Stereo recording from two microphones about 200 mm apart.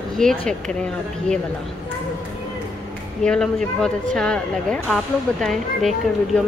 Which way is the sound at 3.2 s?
5° left (ahead or behind).